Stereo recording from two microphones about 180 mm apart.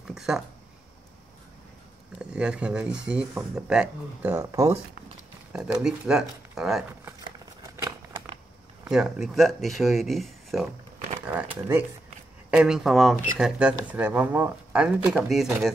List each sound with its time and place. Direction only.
0.0 s speech: 5° right (ahead or behind)
2.3 s speech: 5° right (ahead or behind)
5.5 s speech: 5° right (ahead or behind)
7.6 s a sound: 20° right (ahead or behind)
8.9 s speech: centre (ahead or behind)
11.2 s speech: 10° right (ahead or behind)